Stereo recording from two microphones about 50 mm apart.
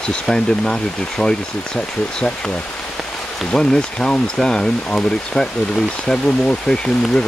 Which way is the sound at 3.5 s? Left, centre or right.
Centre.